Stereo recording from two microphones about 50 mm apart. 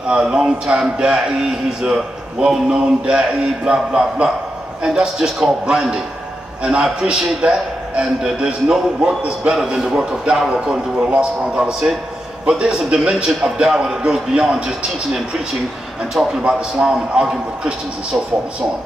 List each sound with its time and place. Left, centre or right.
0.1 s a man's voice: centre
2.5 s a man's voice: centre
16.4 s a man's voice: centre